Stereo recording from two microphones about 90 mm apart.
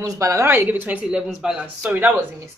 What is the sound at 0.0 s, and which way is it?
A woman's voice, 35° right (ahead or behind).